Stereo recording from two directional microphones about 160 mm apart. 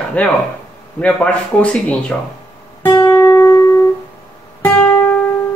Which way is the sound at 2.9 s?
15° left (ahead or behind).